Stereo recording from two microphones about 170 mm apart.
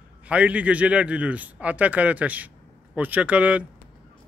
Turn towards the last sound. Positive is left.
turn(degrees=-10)  # may be behind; listen again after turning